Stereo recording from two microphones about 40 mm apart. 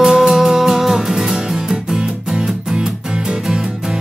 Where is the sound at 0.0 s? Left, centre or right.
Centre.